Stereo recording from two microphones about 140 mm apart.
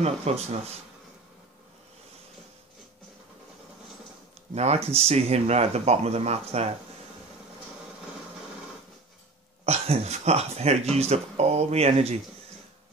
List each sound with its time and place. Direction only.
0.0 s speech: 50° right (ahead or behind)
4.6 s speech: 45° right (ahead or behind)
9.7 s speech: 50° right (ahead or behind)